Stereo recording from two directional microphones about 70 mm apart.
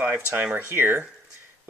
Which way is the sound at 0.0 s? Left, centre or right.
Right.